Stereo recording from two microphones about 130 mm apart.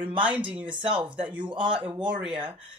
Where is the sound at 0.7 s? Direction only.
40° right (ahead or behind).